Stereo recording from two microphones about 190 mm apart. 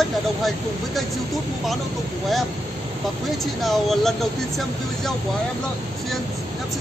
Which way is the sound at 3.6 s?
Centre (ahead or behind).